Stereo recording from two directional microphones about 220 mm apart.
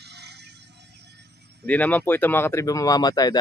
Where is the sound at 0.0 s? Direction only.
50° right (ahead or behind).